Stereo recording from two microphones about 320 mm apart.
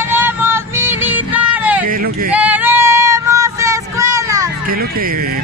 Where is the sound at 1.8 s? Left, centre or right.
Right.